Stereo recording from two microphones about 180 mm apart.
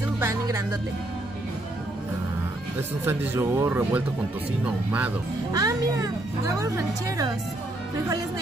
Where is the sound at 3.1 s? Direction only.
15° right (ahead or behind).